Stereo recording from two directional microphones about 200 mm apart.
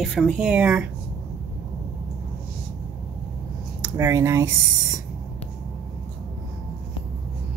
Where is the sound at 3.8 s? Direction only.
15° right (ahead or behind).